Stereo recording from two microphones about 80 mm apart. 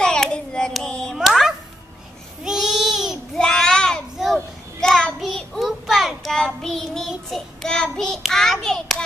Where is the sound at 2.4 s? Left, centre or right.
Centre.